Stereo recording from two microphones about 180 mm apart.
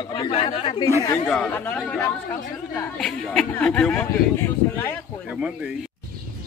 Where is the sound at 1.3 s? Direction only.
10° left (ahead or behind).